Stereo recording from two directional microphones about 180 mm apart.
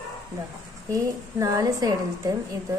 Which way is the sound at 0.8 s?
20° right (ahead or behind).